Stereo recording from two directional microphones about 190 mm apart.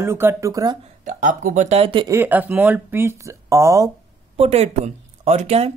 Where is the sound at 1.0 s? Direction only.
40° right (ahead or behind); by 2.1 s 25° right (ahead or behind).